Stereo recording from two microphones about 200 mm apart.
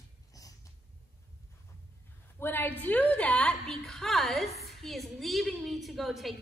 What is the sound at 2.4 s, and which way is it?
A woman's voice, 10° left (ahead or behind).